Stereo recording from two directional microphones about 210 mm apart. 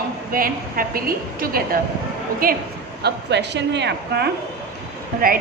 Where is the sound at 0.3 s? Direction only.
45° right (ahead or behind).